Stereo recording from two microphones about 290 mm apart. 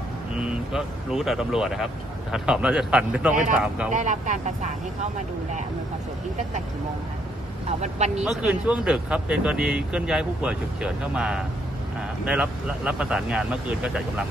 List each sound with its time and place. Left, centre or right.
0.4 s speech: centre
3.9 s speech: right
8.2 s speech: centre